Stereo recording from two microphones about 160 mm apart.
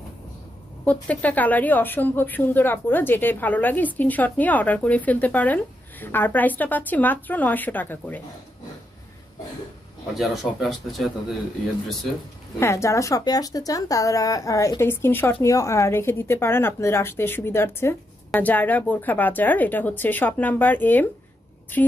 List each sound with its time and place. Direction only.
0.8 s a woman's voice: 10° left (ahead or behind)
10.1 s speech: centre (ahead or behind)
12.5 s a woman's voice: 15° left (ahead or behind)